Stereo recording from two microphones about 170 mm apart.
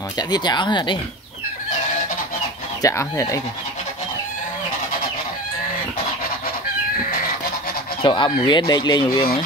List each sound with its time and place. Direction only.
0.3 s speech: 25° left (ahead or behind)
2.8 s speech: 15° left (ahead or behind)
8.0 s speech: 30° left (ahead or behind)